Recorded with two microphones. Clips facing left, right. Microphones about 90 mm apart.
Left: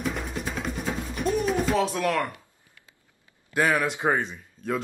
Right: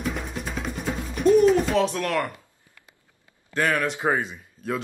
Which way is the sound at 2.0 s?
5° left (ahead or behind).